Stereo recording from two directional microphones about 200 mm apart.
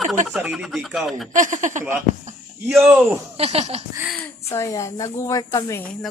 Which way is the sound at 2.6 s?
5° right (ahead or behind).